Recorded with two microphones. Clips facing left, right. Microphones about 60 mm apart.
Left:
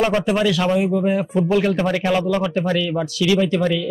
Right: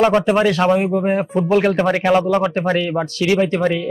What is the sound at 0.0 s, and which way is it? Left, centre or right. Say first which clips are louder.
Speech: right 4 dB; right.